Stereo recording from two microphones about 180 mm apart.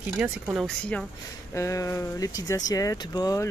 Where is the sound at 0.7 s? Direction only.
5° left (ahead or behind).